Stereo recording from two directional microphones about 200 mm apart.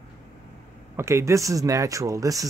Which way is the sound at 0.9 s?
15° right (ahead or behind).